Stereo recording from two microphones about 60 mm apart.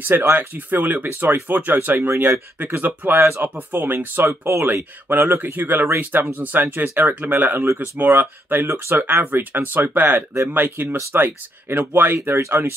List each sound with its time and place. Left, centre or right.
0.0 s speech: right
3.2 s speech: right
3.4 s speech: right
4.5 s speech: right
5.0 s speech: right
12.4 s speech: right